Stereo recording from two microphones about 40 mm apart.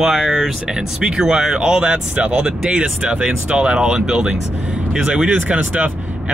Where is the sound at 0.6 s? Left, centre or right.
Right.